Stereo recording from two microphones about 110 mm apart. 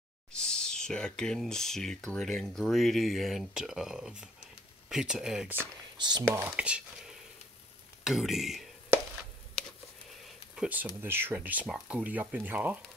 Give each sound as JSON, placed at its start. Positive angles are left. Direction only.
{"t": 0.3, "sound": "speech", "side_deg": 5}
{"t": 5.9, "sound": "speech", "side_deg": -40}
{"t": 6.5, "sound": "speech", "side_deg": -10}
{"t": 10.5, "sound": "speech", "side_deg": -10}
{"t": 11.6, "sound": "speech", "side_deg": -5}
{"t": 12.0, "sound": "speech", "side_deg": -15}